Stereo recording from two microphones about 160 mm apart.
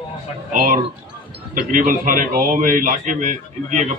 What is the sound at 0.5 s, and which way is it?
A man's voice, 60° right (ahead or behind).